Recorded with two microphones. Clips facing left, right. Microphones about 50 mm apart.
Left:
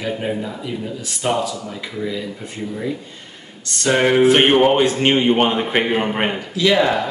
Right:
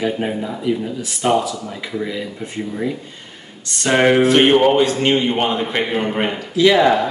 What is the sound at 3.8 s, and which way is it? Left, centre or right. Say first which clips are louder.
Speech: right 2 dB; centre.